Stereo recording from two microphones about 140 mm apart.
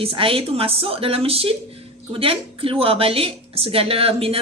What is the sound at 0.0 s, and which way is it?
A woman's voice, 40° right (ahead or behind).